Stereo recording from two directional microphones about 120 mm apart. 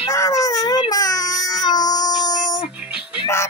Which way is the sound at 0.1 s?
30° left (ahead or behind).